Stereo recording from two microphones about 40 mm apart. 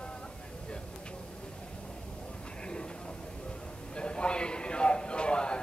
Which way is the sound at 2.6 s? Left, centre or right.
Left.